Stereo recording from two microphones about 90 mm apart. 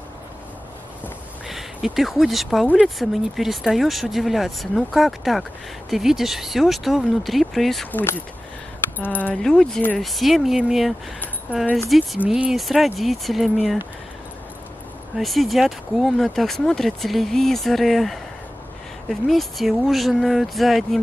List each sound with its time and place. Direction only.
1.5 s speech: 5° right (ahead or behind)
7.9 s speech: 25° left (ahead or behind)
9.3 s speech: 5° left (ahead or behind)
11.5 s speech: 15° right (ahead or behind)
11.9 s speech: centre (ahead or behind)
15.1 s speech: centre (ahead or behind)